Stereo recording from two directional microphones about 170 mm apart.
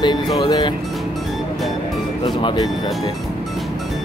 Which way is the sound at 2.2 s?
25° left (ahead or behind).